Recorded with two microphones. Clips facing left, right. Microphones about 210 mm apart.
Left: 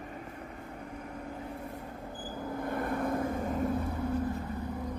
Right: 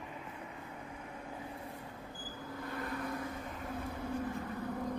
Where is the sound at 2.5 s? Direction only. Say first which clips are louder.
Left 8 dB; 50° left (ahead or behind).